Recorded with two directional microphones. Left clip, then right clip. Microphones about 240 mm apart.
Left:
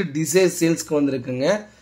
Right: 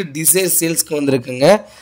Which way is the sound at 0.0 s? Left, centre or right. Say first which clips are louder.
Right 1 dB; right.